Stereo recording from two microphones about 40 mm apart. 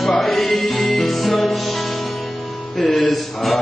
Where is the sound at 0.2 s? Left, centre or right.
Centre.